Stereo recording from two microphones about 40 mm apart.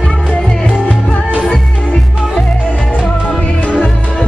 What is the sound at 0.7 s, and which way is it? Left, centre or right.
Music, left.